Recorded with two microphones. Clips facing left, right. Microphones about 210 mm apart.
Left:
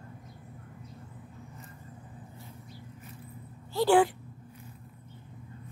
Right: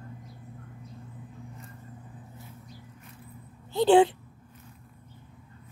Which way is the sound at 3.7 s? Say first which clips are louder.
Right 4 dB; 20° right (ahead or behind).